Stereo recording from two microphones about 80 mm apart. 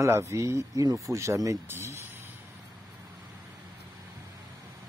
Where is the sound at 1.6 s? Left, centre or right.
Right.